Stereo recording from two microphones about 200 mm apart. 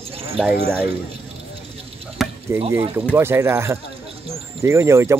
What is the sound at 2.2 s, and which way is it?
Chop, centre (ahead or behind).